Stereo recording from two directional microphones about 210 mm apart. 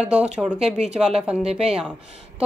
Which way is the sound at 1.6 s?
5° right (ahead or behind).